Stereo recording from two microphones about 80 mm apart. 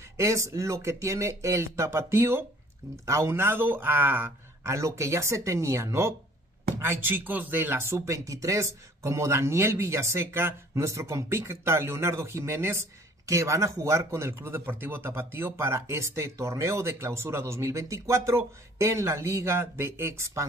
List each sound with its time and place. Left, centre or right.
0.2 s a man's voice: right
4.7 s a man's voice: right